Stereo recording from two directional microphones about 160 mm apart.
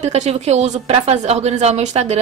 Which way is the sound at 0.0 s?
45° right (ahead or behind).